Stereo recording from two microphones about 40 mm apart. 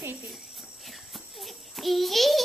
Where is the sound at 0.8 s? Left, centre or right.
Centre.